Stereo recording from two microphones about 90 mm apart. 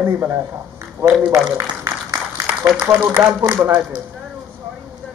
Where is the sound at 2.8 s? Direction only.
15° right (ahead or behind).